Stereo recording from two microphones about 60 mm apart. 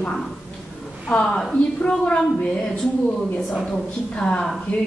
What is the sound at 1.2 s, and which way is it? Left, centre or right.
A woman's voice, centre.